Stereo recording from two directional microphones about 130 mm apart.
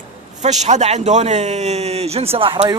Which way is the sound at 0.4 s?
65° right (ahead or behind).